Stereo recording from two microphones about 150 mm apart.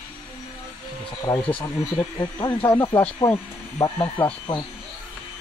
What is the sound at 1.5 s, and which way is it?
Speech, 35° left (ahead or behind).